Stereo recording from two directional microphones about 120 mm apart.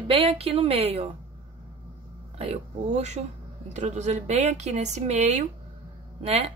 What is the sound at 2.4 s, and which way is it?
Speech, 60° right (ahead or behind).